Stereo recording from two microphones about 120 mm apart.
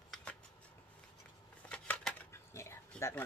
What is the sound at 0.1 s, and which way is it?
Shuffling cards, 10° left (ahead or behind).